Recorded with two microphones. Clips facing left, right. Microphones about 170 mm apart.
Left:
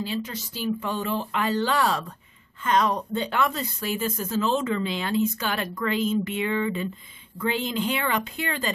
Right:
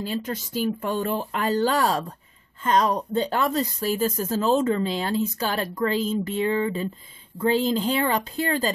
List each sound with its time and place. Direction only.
0.0 s a woman's voice: 50° right (ahead or behind)